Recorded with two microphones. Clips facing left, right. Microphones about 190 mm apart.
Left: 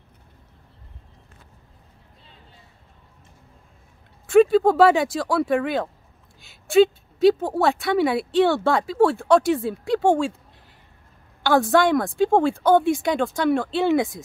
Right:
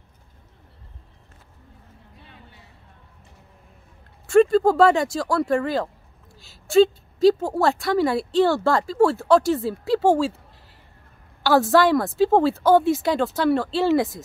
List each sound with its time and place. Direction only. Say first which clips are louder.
2.1 s a sound: right 3 dB; 65° right (ahead or behind)
4.3 s speech: left 1 dB; 5° left (ahead or behind)
11.4 s speech: right 1 dB; 5° right (ahead or behind)